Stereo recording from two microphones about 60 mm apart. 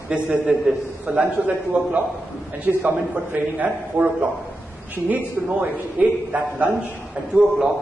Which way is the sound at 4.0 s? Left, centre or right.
Right.